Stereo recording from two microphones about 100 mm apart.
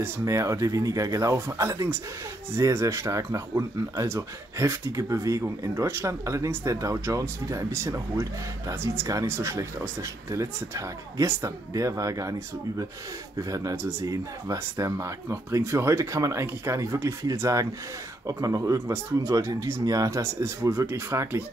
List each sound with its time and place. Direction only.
0.2 s speech: 30° right (ahead or behind)